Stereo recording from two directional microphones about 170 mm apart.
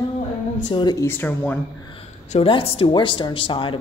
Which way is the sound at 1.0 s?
10° left (ahead or behind).